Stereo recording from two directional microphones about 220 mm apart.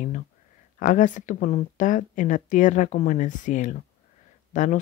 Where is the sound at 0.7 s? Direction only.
35° left (ahead or behind).